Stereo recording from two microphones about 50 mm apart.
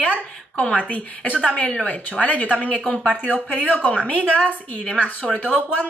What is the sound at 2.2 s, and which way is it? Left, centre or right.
Speech, left.